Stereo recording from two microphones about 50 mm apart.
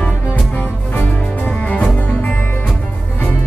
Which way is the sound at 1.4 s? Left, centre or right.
Left.